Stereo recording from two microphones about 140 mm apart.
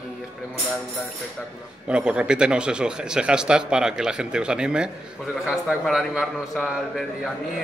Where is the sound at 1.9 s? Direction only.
5° right (ahead or behind).